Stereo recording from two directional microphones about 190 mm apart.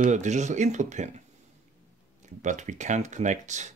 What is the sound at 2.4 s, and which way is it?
Speech, 40° right (ahead or behind).